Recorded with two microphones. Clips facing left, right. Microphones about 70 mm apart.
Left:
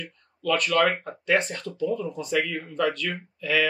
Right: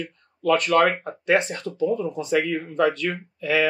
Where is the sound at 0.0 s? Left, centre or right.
Right.